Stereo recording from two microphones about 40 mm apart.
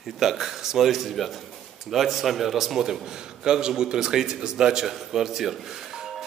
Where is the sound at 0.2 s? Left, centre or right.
Centre.